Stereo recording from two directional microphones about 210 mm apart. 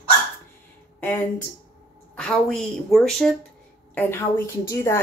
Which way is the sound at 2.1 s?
5° left (ahead or behind).